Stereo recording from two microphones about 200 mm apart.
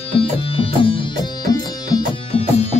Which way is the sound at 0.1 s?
30° left (ahead or behind).